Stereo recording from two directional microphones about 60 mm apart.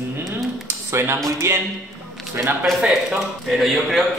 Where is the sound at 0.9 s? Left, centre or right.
Right.